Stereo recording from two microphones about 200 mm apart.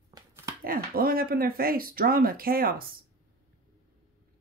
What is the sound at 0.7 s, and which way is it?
Speech, 45° right (ahead or behind).